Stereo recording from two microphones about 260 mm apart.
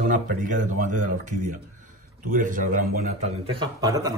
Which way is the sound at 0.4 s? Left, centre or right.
Right.